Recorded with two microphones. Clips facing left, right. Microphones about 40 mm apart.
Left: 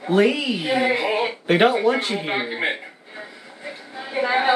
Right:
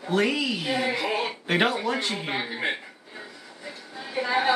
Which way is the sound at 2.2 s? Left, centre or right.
Left.